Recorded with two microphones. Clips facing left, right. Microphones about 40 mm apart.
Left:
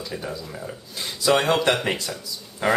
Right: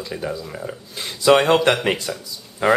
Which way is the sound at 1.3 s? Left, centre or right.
Right.